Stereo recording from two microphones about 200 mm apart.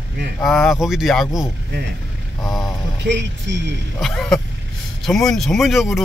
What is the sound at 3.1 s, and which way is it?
Speech, 60° right (ahead or behind).